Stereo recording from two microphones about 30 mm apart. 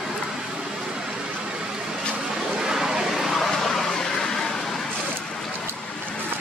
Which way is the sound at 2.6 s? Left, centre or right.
Centre.